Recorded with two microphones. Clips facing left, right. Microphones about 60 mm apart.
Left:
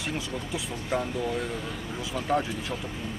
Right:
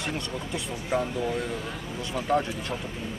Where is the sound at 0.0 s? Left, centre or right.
Centre.